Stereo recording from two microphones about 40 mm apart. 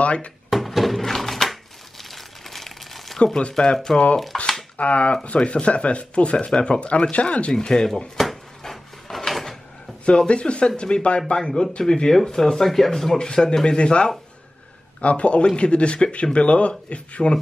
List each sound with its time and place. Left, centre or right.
0.0 s a sound: left
0.5 s a sound: centre
2.0 s crumpling: centre
3.3 s speech: centre
4.7 s speech: left
7.5 s speech: centre
8.2 s drawer open or close: centre
10.0 s speech: left; by 13.2 s centre
13.2 s speech: centre